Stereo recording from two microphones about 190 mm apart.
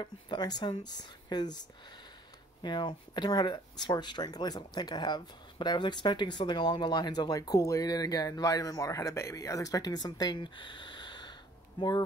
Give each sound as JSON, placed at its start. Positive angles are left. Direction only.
{"t": 0.0, "sound": "speech", "side_deg": 20}